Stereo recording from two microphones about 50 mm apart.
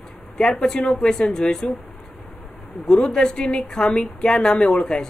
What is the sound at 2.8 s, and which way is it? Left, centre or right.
Speech, centre.